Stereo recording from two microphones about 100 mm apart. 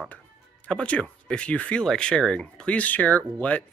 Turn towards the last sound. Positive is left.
turn(degrees=15)  # may be behind; listen again after turning